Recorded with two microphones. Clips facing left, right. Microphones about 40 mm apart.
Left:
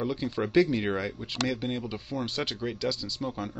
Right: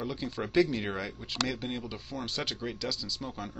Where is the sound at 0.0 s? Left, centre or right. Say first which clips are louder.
Left 5 dB; centre.